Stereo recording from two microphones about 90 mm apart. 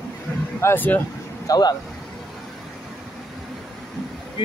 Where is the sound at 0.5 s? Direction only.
25° left (ahead or behind).